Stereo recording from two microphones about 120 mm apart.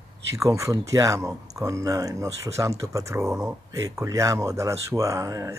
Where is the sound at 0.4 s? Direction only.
25° right (ahead or behind).